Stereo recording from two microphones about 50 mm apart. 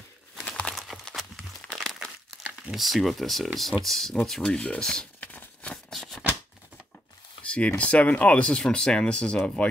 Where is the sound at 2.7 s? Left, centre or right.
Centre.